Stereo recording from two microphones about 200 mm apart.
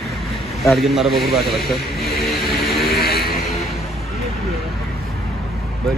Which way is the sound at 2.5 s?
50° left (ahead or behind).